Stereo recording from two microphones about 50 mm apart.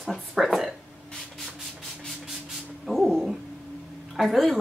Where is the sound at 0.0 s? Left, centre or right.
Centre.